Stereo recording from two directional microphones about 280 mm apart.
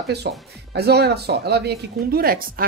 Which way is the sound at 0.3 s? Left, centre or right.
Right.